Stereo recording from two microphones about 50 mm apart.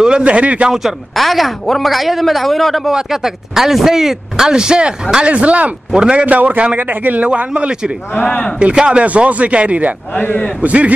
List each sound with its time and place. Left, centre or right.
0.0 s a man's voice: centre
1.1 s a man's voice: centre
6.2 s a man's voice: right
7.2 s a man's voice: right
8.1 s speech: left
8.5 s a man's voice: right
10.1 s speech: left
10.6 s a man's voice: right